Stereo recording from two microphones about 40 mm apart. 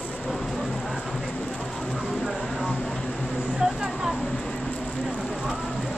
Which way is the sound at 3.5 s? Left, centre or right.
Centre.